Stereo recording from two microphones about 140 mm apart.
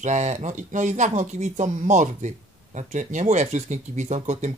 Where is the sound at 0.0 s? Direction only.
55° right (ahead or behind).